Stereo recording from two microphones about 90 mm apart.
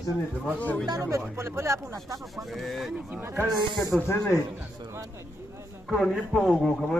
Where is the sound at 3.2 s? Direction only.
25° right (ahead or behind).